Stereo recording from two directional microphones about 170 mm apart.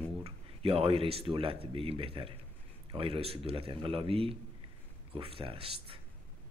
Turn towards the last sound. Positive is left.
turn(degrees=-30)  # may be behind; listen again after turning